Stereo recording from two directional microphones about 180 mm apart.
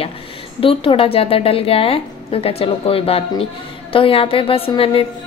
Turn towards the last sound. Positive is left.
turn(degrees=30)  # may be behind; listen again after turning